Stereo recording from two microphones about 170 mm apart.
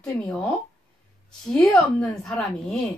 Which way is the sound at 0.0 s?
5° left (ahead or behind).